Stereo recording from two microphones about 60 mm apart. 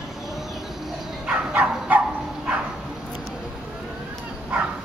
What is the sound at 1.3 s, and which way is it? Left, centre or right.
Dog, right.